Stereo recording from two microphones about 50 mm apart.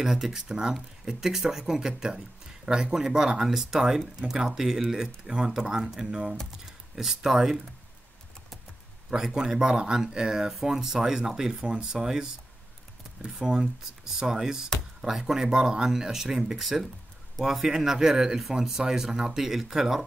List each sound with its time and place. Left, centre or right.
0.0 s speech: centre
7.0 s speech: centre
9.1 s speech: centre